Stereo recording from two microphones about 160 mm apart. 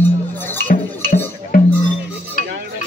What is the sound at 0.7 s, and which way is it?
Music, 60° left (ahead or behind).